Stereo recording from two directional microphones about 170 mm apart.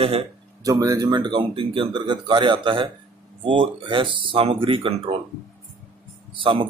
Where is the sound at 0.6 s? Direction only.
20° right (ahead or behind).